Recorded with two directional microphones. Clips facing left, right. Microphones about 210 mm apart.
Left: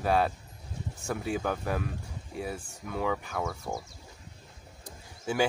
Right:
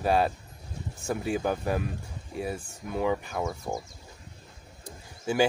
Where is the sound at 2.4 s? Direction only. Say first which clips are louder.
Right 3 dB; 15° right (ahead or behind).